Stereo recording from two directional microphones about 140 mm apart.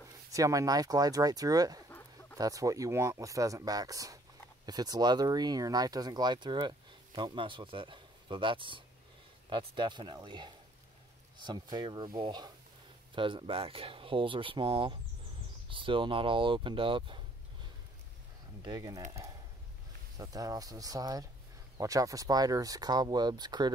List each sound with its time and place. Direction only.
0.3 s speech: 25° right (ahead or behind)
1.9 s a sound: 15° left (ahead or behind)
2.3 s speech: 25° right (ahead or behind)
18.6 s speech: 30° right (ahead or behind)
20.2 s speech: 25° right (ahead or behind)